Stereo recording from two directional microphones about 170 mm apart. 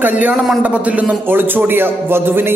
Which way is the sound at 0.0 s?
10° right (ahead or behind).